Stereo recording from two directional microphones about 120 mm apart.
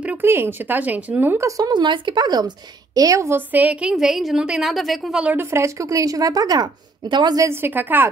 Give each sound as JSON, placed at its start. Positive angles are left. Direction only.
{"t": 0.0, "sound": "speech", "side_deg": -15}
{"t": 1.6, "sound": "a woman's voice", "side_deg": -40}
{"t": 3.9, "sound": "a woman's voice", "side_deg": 0}
{"t": 5.2, "sound": "speech", "side_deg": -15}
{"t": 7.4, "sound": "speech", "side_deg": -15}